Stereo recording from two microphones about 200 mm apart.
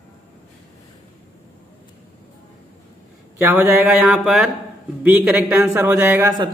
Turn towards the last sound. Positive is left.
turn(degrees=-15)  # may be behind; listen again after turning